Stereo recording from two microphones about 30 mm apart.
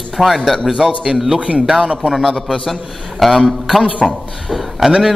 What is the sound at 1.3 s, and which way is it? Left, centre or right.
Speech, right.